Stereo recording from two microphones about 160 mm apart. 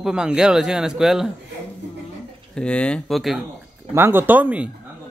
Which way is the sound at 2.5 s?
5° left (ahead or behind).